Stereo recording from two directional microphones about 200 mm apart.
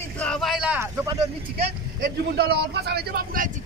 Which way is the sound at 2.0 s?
55° right (ahead or behind).